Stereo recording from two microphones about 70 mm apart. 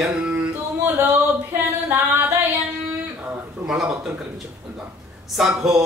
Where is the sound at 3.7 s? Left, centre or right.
Centre.